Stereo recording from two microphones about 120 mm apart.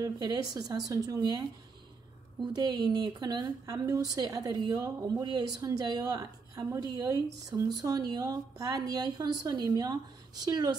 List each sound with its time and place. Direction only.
0.0 s speech: 30° right (ahead or behind)
2.4 s speech: 35° right (ahead or behind)